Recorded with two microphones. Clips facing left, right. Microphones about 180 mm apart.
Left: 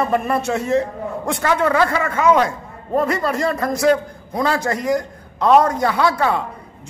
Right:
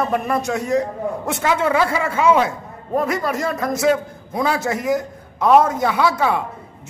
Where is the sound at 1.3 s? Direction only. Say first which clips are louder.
Left 1 dB; 10° right (ahead or behind).